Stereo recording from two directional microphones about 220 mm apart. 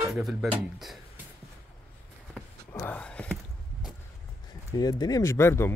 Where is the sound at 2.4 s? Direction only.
Centre (ahead or behind).